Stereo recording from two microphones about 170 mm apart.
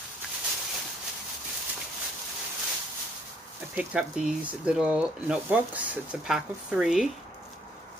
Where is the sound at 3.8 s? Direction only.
5° right (ahead or behind).